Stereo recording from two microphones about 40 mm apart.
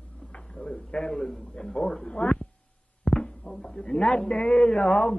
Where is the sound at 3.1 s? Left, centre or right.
Centre.